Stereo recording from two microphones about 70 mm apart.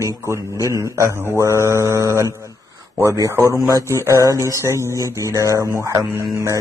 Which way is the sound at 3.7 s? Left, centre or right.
Right.